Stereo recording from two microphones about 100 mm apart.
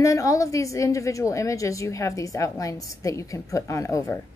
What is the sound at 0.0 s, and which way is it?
A woman's voice, 30° left (ahead or behind).